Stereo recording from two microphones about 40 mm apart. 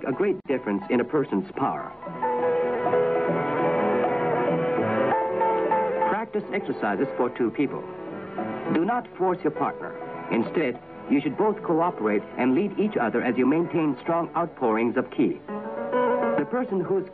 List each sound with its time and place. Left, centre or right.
0.0 s speech: centre
2.2 s music: centre
8.4 s music: centre
9.2 s speech: centre
11.3 s a man's voice: centre
15.8 s music: centre